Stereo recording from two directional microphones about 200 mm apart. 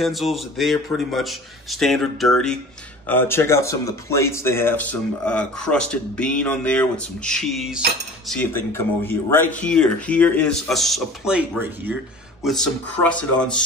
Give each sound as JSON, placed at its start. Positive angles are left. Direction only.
{"t": 0.0, "sound": "speech", "side_deg": 0}
{"t": 12.4, "sound": "speech", "side_deg": 5}